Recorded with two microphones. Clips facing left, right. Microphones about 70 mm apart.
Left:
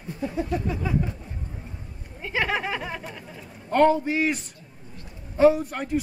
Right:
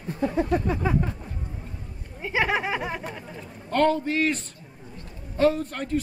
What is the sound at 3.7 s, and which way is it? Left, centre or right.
A man's voice, centre.